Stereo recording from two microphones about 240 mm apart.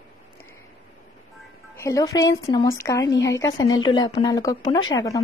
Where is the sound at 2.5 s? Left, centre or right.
Centre.